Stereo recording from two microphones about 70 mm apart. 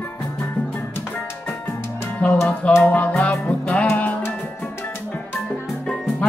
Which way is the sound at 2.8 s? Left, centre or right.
Centre.